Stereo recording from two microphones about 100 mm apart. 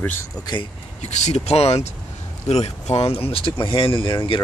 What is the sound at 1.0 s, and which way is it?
Speech, 90° left.